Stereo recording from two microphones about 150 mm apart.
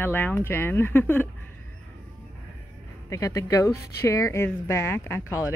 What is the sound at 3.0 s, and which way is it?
Speech, 20° left (ahead or behind).